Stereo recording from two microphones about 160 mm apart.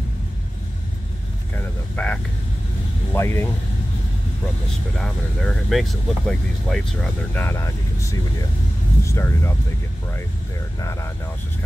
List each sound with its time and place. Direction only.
1.6 s vehicle: 10° left (ahead or behind)
3.1 s speech: 15° left (ahead or behind)
4.9 s speech: 5° left (ahead or behind)
10.8 s speech: 20° left (ahead or behind)